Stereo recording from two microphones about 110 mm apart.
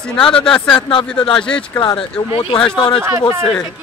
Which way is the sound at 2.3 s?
50° left (ahead or behind).